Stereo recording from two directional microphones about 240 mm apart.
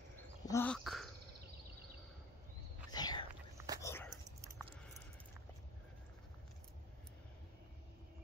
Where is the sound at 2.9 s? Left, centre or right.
Centre.